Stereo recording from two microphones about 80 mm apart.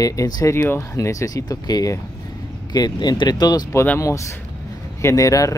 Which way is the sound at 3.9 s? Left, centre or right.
Left.